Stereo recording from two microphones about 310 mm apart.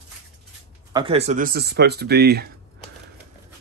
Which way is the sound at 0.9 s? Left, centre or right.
Centre.